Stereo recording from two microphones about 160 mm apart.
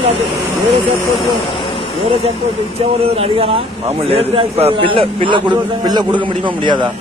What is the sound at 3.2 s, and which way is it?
A man's voice, 40° right (ahead or behind).